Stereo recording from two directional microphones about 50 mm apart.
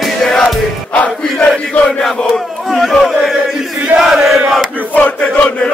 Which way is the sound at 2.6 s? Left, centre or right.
Centre.